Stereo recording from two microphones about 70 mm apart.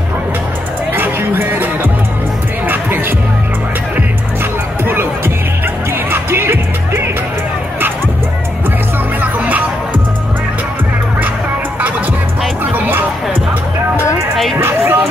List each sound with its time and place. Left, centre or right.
0.9 s music: right
4.8 s a sound: right
6.0 s music: right
9.2 s music: right
12.7 s music: right
14.6 s music: right